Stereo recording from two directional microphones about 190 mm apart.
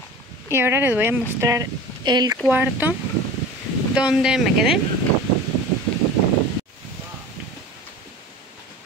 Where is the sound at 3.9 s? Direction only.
5° right (ahead or behind).